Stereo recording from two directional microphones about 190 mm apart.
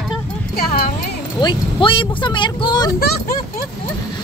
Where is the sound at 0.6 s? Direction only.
50° left (ahead or behind).